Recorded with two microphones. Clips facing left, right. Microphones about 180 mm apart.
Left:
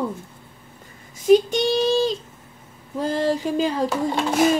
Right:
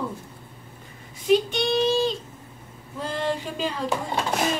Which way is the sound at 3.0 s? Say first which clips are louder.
Left 6 dB; 40° left (ahead or behind).